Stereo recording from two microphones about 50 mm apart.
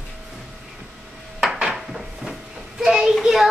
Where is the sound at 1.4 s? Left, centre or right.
Centre.